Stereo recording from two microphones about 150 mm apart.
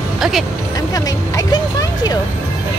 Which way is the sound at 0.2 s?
Centre (ahead or behind).